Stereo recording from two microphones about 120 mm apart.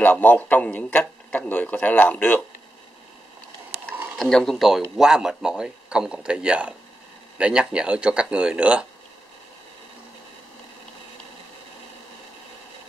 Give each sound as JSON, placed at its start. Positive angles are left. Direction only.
{"t": 0.0, "sound": "a man's voice", "side_deg": 15}
{"t": 4.2, "sound": "a man's voice", "side_deg": 5}